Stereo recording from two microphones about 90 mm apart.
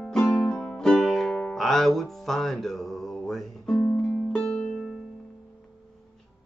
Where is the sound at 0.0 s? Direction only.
10° left (ahead or behind).